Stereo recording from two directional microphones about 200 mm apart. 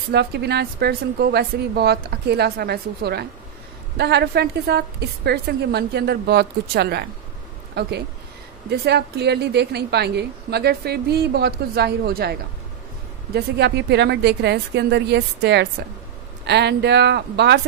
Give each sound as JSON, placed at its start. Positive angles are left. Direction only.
{"t": 0.1, "sound": "a woman's voice", "side_deg": -55}
{"t": 8.6, "sound": "a woman's voice", "side_deg": -55}